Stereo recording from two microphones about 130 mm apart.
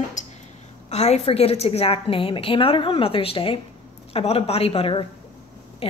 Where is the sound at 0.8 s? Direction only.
55° left (ahead or behind).